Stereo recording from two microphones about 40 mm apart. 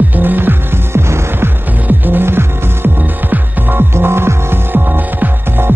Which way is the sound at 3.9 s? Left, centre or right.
Right.